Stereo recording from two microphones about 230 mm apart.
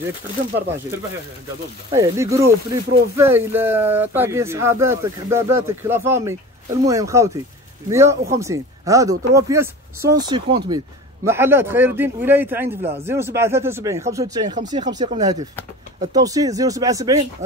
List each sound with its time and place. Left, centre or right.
1.9 s speech: centre